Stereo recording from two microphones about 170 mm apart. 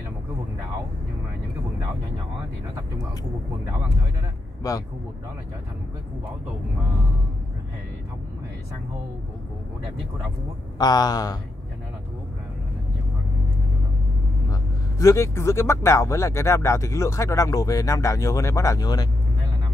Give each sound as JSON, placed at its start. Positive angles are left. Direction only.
{"t": 4.6, "sound": "speech", "side_deg": 20}
{"t": 10.8, "sound": "speech", "side_deg": 25}
{"t": 14.5, "sound": "speech", "side_deg": 20}